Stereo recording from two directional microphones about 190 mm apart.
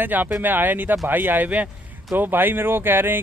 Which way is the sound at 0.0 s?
10° right (ahead or behind).